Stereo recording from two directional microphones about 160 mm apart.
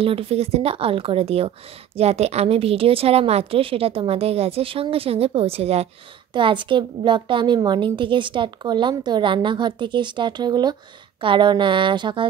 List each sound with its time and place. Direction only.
0.0 s a woman's voice: 35° right (ahead or behind)